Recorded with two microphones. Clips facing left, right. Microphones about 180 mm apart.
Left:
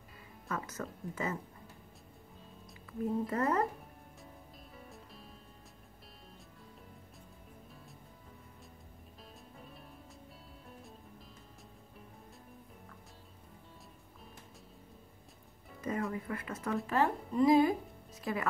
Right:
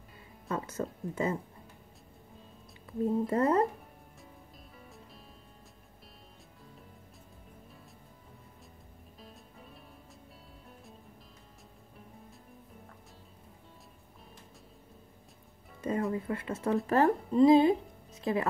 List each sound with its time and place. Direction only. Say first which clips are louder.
0.5 s speech: right 5 dB; 30° right (ahead or behind)
2.9 s speech: right 5 dB; 30° right (ahead or behind)
15.8 s speech: right 4 dB; 30° right (ahead or behind)
17.3 s a woman's voice: right 4 dB; 25° right (ahead or behind)